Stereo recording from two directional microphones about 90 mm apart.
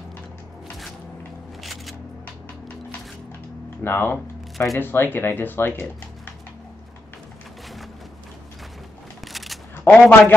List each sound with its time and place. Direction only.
1.6 s single-lens reflex camera: centre (ahead or behind)
3.8 s speech: 25° left (ahead or behind)
9.3 s single-lens reflex camera: centre (ahead or behind)
9.8 s a man's voice: 15° left (ahead or behind)